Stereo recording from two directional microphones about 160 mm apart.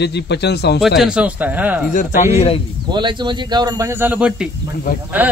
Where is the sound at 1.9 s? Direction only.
50° left (ahead or behind).